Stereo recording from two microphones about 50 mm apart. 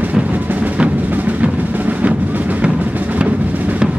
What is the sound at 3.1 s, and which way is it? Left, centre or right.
Music, right.